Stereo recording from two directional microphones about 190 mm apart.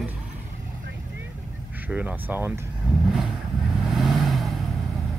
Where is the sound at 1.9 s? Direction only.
10° right (ahead or behind).